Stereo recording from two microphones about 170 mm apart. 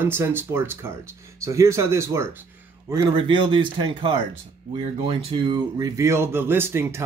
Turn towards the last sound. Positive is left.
turn(degrees=-15)  # may be behind; listen again after turning